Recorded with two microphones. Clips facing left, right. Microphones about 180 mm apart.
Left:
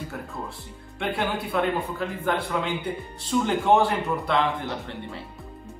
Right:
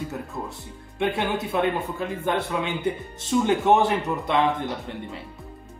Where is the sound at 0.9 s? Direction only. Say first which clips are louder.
Right 3 dB; 20° right (ahead or behind).